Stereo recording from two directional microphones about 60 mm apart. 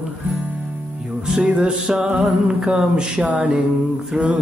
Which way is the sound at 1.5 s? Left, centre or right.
Centre.